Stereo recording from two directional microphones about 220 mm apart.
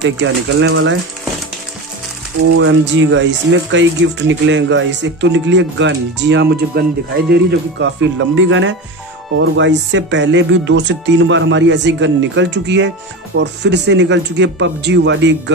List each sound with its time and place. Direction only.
0.2 s speech: 60° right (ahead or behind)
2.5 s speech: 60° right (ahead or behind)
7.8 s speech: 55° right (ahead or behind)